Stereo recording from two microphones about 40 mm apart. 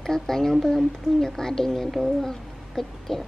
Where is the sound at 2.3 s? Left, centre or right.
Centre.